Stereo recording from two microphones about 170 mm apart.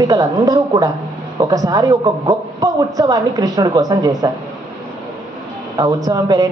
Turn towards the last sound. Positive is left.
turn(degrees=-20)  # may be behind; listen again after turning